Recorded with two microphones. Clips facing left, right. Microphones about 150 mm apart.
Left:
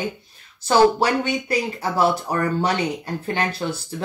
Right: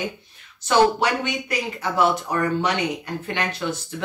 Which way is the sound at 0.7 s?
35° left (ahead or behind).